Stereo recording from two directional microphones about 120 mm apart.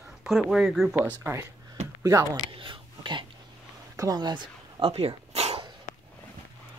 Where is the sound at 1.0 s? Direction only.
15° right (ahead or behind).